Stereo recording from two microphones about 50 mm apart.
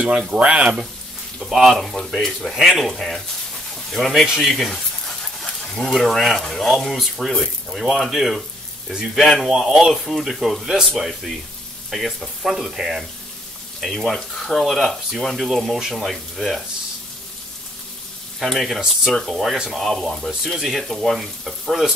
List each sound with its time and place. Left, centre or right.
0.3 s speech: right
1.4 s speech: centre
3.7 s speech: centre
18.4 s speech: centre